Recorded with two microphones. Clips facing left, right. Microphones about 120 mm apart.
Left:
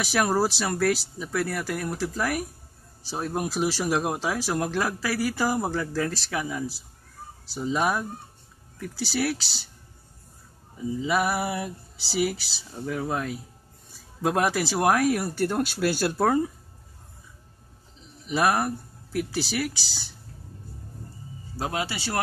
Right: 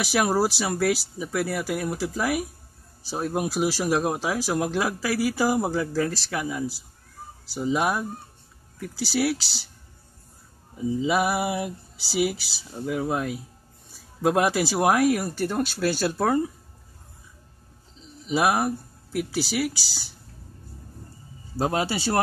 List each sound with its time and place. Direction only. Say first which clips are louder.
0.0 s speech: right 1 dB; 5° right (ahead or behind)
11.0 s speech: right 1 dB; 15° right (ahead or behind); by 16.4 s 5° left (ahead or behind)
18.3 s speech: right 1 dB; 10° right (ahead or behind)
21.5 s speech: right 5 dB; 30° right (ahead or behind)